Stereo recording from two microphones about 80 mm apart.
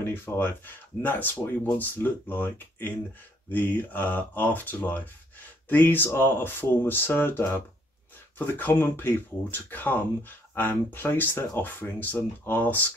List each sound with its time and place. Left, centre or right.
0.0 s speech: left